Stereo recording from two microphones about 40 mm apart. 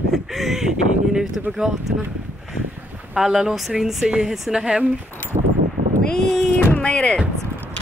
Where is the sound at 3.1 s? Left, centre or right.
Centre.